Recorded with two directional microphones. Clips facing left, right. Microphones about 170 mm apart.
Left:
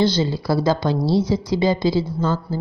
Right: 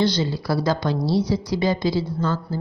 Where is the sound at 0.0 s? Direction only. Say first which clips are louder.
Left 2 dB; 25° left (ahead or behind).